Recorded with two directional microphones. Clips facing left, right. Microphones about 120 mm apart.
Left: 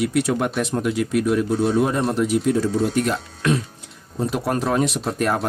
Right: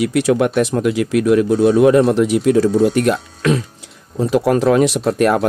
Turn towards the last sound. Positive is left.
turn(degrees=-75)  # may be behind; listen again after turning